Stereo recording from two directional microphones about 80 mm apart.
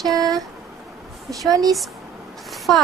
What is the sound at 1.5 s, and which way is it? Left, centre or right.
Speech, right.